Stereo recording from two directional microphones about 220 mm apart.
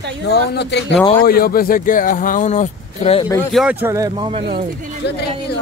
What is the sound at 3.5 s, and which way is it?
Speech, 5° right (ahead or behind).